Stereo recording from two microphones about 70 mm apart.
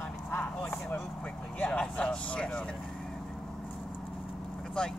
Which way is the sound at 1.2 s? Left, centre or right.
Centre.